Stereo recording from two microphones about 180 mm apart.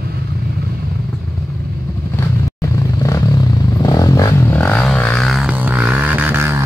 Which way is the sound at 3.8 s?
20° left (ahead or behind).